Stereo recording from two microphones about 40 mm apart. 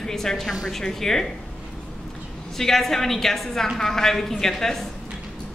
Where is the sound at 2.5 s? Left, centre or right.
Centre.